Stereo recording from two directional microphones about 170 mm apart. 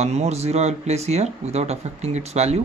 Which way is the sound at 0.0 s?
40° right (ahead or behind).